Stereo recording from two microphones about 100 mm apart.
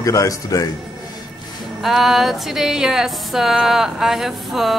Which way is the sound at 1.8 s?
Centre (ahead or behind).